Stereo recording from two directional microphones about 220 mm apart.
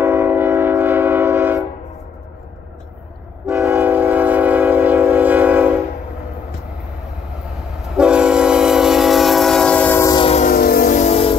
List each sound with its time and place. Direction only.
0.0 s train: 10° right (ahead or behind)
3.4 s train: 10° right (ahead or behind)
7.8 s train: 5° right (ahead or behind); by 10.5 s 25° left (ahead or behind)
10.5 s train: 45° left (ahead or behind)